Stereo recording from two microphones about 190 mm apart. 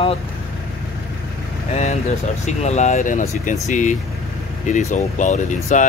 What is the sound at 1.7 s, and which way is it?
Speech, 35° left (ahead or behind).